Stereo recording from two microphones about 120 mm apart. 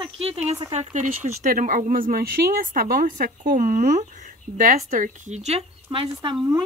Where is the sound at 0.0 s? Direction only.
50° right (ahead or behind).